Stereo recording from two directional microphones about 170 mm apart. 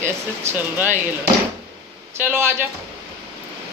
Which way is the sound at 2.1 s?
15° right (ahead or behind).